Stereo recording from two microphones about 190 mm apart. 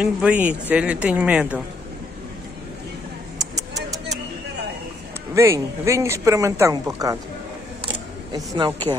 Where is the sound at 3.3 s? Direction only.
20° right (ahead or behind).